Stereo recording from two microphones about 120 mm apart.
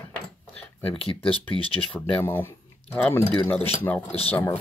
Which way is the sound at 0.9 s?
50° left (ahead or behind).